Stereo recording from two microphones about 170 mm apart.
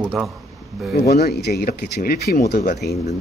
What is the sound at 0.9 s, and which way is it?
Speech, 70° left (ahead or behind).